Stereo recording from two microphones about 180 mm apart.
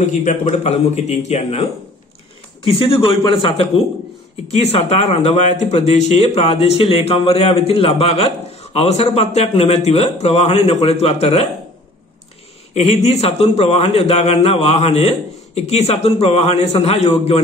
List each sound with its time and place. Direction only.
0.0 s a man's voice: 45° left (ahead or behind)
12.7 s speech: 35° left (ahead or behind)